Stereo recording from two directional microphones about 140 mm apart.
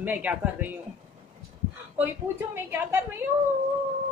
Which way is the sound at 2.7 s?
15° right (ahead or behind).